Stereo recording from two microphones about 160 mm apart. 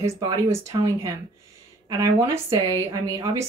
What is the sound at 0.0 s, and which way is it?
Speech, 15° right (ahead or behind).